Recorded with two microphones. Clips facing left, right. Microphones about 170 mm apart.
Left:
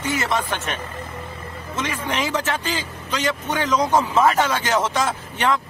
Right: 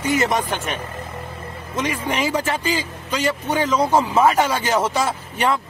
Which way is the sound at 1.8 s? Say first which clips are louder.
Right 3 dB; 10° right (ahead or behind).